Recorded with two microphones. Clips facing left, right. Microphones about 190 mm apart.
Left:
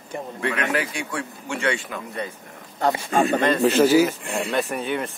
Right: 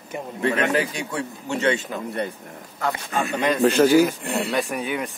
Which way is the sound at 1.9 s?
30° right (ahead or behind).